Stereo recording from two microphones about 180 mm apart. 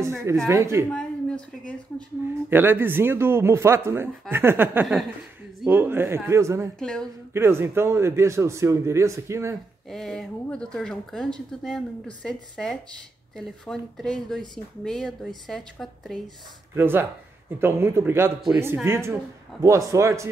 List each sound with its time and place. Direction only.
0.0 s speech: 15° right (ahead or behind)
0.9 s a woman's voice: 5° left (ahead or behind)
2.5 s speech: 10° right (ahead or behind)
6.8 s speech: 5° left (ahead or behind)
7.3 s speech: 15° right (ahead or behind)
9.8 s speech: centre (ahead or behind)
16.7 s speech: 10° right (ahead or behind)